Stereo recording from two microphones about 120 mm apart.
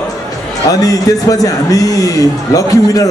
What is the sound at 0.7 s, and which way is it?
A man's voice, 30° left (ahead or behind).